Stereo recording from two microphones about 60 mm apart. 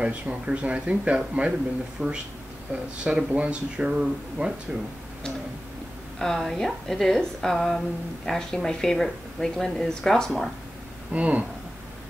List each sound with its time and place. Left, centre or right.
0.0 s speech: centre
6.1 s a woman's voice: centre
11.1 s speech: right